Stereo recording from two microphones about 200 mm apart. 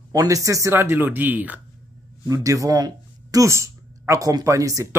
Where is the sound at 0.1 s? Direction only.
15° right (ahead or behind).